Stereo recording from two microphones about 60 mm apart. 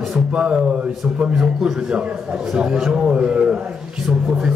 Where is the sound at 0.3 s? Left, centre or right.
Centre.